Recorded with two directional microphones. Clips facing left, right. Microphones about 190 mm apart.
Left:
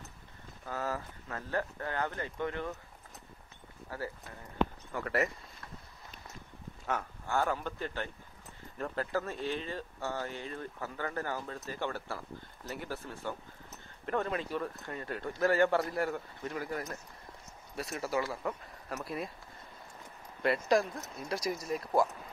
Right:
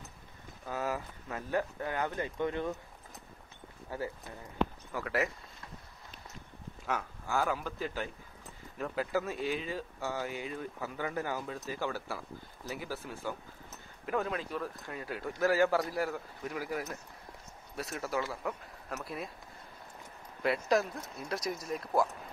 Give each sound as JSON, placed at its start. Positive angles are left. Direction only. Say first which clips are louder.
{"t": 0.7, "sound": "speech", "louder": "right 1 dB", "side_deg": -15}
{"t": 3.9, "sound": "speech", "louder": "right 2 dB", "side_deg": -20}
{"t": 4.9, "sound": "speech", "louder": "left 1 dB", "side_deg": 0}
{"t": 6.9, "sound": "speech", "louder": "even", "side_deg": -5}
{"t": 20.4, "sound": "speech", "louder": "left 1 dB", "side_deg": 0}